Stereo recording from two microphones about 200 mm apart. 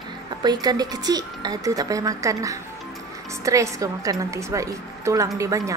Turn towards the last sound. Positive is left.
turn(degrees=-15)  # may be behind; listen again after turning